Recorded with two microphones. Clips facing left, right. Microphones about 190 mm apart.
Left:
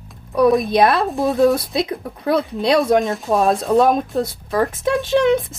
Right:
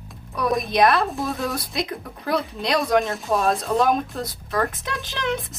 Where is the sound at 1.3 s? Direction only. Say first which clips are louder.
Left 12 dB; centre (ahead or behind).